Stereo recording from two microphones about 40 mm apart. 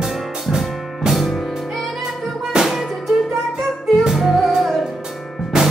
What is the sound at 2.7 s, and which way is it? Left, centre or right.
Music, centre.